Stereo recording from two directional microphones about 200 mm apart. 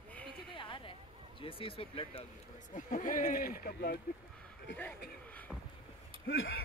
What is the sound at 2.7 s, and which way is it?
Speech, 40° left (ahead or behind).